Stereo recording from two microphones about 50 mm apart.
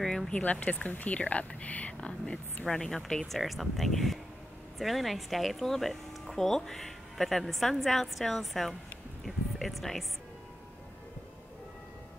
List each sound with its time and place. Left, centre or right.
0.3 s speech: left
2.6 s speech: centre